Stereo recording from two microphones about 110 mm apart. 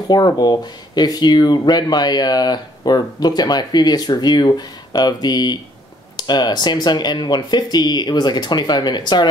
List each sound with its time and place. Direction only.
0.1 s speech: 40° left (ahead or behind)